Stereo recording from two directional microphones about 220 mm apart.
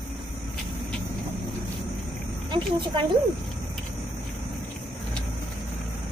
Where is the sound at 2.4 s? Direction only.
20° right (ahead or behind).